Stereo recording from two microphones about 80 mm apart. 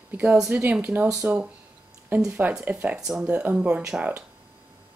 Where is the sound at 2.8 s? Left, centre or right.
Centre.